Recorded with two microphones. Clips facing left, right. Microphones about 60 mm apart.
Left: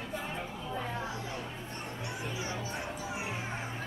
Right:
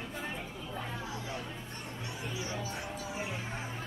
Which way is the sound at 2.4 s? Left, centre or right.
Left.